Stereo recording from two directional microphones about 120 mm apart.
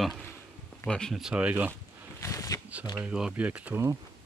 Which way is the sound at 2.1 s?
25° left (ahead or behind).